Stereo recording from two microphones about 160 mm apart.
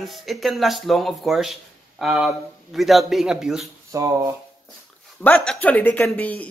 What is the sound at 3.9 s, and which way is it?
Speech, 20° right (ahead or behind).